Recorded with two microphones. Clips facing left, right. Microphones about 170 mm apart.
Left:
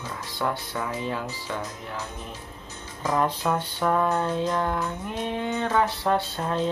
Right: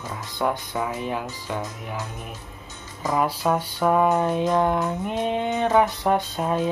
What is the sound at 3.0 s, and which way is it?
Music, 10° right (ahead or behind).